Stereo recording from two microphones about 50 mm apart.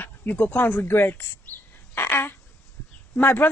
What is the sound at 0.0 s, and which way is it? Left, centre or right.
A woman's voice, left.